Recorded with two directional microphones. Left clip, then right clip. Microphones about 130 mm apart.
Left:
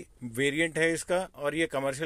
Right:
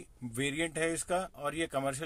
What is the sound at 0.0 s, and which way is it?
Speech, 20° left (ahead or behind).